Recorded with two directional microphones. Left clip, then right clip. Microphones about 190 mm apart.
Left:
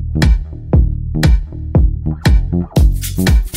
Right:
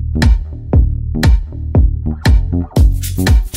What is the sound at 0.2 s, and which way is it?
Music, centre (ahead or behind).